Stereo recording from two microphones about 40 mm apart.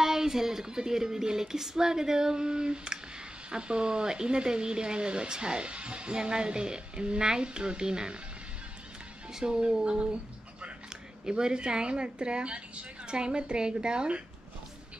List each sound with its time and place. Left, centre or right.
0.0 s music: centre
3.4 s speech: right
9.3 s speech: centre
11.2 s speech: centre